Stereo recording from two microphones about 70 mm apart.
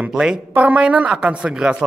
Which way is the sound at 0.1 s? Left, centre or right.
Centre.